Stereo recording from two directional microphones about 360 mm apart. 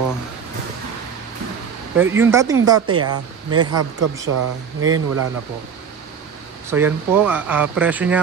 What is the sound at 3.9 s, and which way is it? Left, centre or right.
Speech, right.